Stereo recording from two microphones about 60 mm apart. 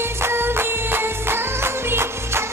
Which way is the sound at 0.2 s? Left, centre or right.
Right.